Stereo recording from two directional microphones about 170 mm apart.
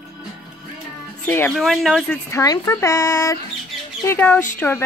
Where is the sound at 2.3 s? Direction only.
20° left (ahead or behind).